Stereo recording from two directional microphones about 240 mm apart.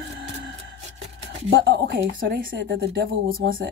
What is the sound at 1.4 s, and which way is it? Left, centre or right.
Speech, right.